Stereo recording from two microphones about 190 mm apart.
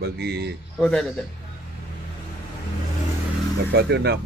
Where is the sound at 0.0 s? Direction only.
60° right (ahead or behind).